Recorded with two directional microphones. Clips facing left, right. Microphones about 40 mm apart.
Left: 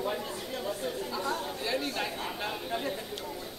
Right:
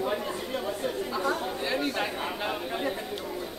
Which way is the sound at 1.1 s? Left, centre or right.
Right.